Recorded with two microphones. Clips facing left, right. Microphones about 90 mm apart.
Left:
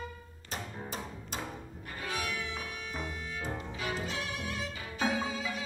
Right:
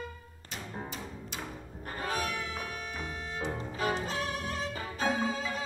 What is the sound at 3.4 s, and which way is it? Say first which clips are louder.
Music: right 6 dB; 40° right (ahead or behind).